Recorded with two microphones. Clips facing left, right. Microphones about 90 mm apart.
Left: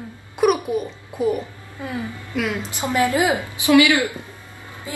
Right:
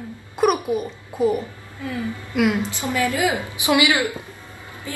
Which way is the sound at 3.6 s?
20° right (ahead or behind).